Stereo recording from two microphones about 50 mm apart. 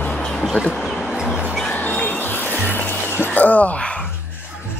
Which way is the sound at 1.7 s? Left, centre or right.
Left.